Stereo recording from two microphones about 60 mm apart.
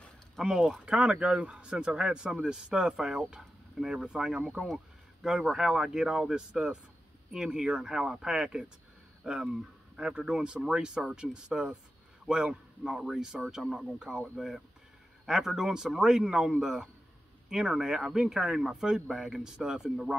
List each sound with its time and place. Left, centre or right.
0.4 s a man's voice: centre